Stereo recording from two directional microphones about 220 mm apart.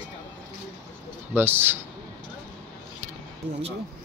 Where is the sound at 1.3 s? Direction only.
10° right (ahead or behind).